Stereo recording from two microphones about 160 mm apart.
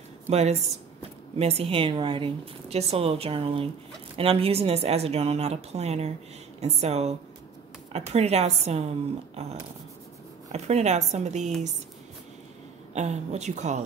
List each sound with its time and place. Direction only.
0.3 s a woman's voice: 45° right (ahead or behind)
12.9 s speech: 45° right (ahead or behind)